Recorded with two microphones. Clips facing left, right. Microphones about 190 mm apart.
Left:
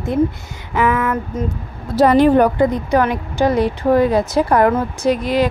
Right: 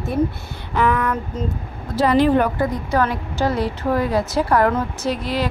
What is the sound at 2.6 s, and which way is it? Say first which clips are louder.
Speech: left 5 dB; 15° left (ahead or behind).